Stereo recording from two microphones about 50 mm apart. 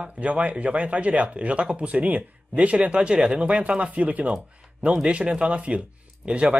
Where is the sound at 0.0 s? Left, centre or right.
Right.